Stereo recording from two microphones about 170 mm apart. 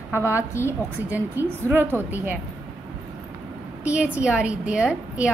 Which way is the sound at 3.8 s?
10° right (ahead or behind).